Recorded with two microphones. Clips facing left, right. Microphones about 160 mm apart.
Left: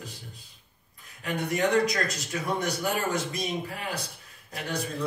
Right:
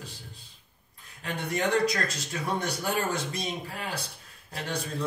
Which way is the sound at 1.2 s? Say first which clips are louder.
Left 3 dB; 30° right (ahead or behind).